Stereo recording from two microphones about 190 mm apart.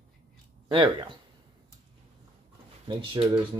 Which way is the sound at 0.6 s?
25° right (ahead or behind).